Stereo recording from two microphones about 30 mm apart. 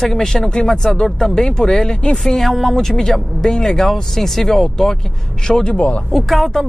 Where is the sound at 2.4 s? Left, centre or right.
Centre.